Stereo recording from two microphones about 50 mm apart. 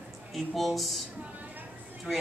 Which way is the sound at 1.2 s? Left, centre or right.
Right.